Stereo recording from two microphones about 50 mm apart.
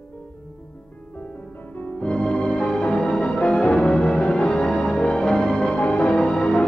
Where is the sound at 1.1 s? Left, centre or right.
Left; by 5.8 s centre.